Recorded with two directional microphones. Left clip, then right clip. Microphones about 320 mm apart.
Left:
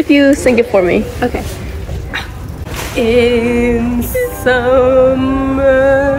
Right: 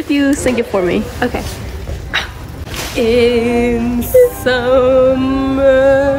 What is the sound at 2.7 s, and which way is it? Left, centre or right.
Music, centre.